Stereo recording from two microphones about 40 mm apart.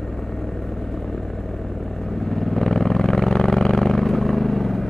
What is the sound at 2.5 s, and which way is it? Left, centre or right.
Vehicle, centre.